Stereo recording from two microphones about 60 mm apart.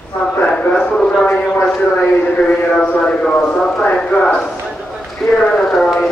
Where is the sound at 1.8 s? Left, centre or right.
Left.